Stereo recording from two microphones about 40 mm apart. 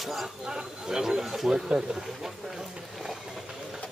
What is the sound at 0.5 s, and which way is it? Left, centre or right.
Speech, centre.